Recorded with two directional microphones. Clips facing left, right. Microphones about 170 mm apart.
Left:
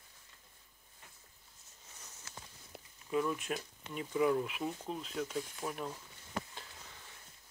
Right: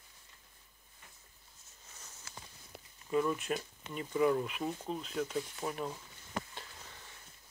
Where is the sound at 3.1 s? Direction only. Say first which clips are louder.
Right 2 dB; centre (ahead or behind).